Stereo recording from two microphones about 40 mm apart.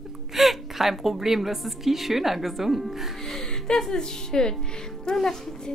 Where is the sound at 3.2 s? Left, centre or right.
Centre.